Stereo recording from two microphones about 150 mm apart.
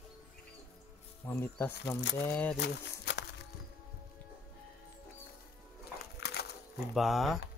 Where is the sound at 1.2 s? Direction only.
15° left (ahead or behind).